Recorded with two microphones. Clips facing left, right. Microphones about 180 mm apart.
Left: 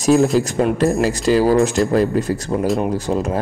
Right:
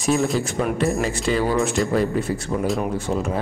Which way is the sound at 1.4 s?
35° left (ahead or behind).